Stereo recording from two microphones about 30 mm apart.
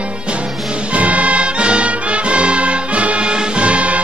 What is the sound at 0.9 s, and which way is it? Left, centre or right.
Music, right.